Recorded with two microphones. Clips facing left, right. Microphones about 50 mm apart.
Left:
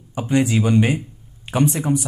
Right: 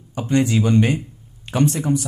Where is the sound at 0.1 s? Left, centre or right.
Centre.